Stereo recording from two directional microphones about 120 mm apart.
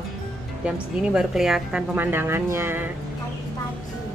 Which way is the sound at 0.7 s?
5° right (ahead or behind).